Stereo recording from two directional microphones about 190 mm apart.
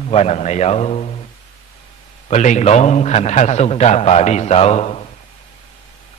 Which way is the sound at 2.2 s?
35° left (ahead or behind).